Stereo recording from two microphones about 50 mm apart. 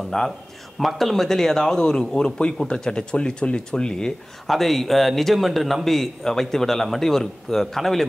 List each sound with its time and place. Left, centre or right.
0.1 s a man's voice: centre
0.7 s a man's voice: centre
4.5 s a man's voice: centre